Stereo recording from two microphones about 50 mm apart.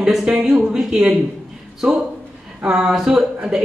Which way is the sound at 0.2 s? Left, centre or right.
Centre.